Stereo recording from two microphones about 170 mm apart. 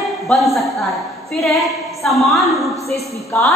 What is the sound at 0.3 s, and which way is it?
Speech, centre (ahead or behind).